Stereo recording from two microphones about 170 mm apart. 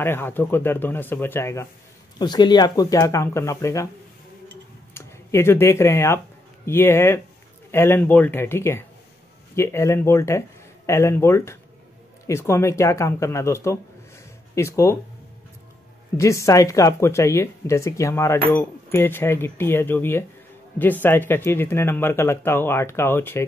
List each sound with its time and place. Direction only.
0.0 s speech: 15° left (ahead or behind)
4.9 s speech: 15° left (ahead or behind)
16.2 s speech: 20° left (ahead or behind)